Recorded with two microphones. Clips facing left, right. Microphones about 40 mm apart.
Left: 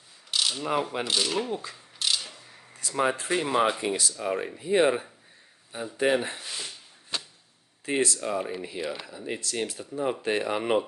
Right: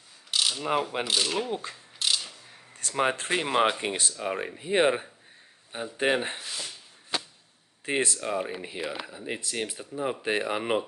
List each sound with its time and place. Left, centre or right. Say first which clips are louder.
0.3 s mechanisms: even; centre
1.0 s speech: even; centre
1.5 s speech: even; right
2.0 s a sound: even; centre
2.9 s speech: even; right
4.2 s speech: left 2 dB; centre
4.6 s speech: left 1 dB; right
6.4 s a sound: even; centre
7.8 s speech: left 1 dB; right
8.2 s speech: even; centre
8.6 s speech: left 1 dB; right; by 10.8 s centre